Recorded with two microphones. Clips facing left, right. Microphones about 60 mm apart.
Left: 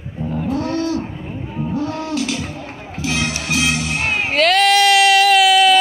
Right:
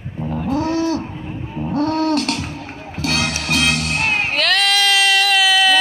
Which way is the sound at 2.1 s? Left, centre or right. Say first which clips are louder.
Right 3 dB; right.